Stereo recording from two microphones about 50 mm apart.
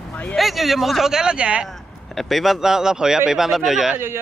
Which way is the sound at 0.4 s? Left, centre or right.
Centre.